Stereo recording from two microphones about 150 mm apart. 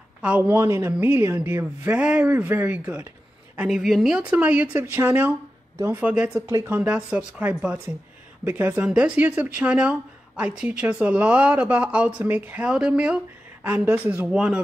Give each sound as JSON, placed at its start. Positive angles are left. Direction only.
{"t": 0.2, "sound": "speech", "side_deg": -10}
{"t": 6.4, "sound": "speech", "side_deg": -15}